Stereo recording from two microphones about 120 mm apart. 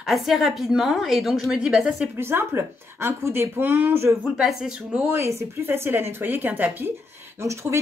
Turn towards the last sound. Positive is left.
turn(degrees=-25)  # may be behind; listen again after turning